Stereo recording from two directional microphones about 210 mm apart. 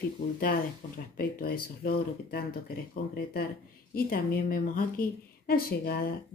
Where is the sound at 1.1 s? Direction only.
45° left (ahead or behind).